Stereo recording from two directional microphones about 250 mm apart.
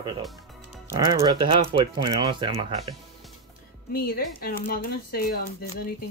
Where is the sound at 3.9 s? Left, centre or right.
Left.